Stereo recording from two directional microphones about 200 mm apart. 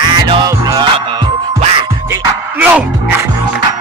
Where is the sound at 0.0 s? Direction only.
20° right (ahead or behind).